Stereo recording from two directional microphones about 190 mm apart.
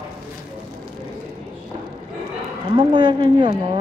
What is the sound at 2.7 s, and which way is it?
Speech, 25° right (ahead or behind).